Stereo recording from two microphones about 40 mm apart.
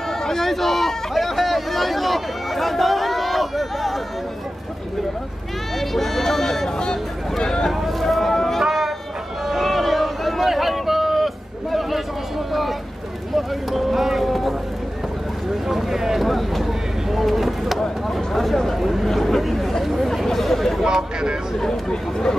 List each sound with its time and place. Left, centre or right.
0.2 s a sound: centre
5.8 s speech: centre
7.8 s a sound: centre
8.6 s music: centre
9.5 s a sound: centre
13.3 s speech: centre
15.7 s speech: centre
19.8 s chatter: centre
20.8 s speech: centre
21.5 s speech: centre